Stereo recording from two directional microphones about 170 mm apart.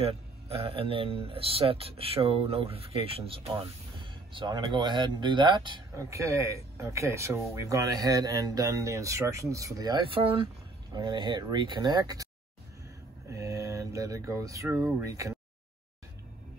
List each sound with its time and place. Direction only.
0.0 s speech: 35° right (ahead or behind)
6.0 s speech: 15° right (ahead or behind)
13.3 s speech: 20° right (ahead or behind)